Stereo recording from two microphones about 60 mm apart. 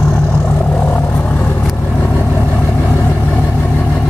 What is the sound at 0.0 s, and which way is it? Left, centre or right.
Vehicle, left.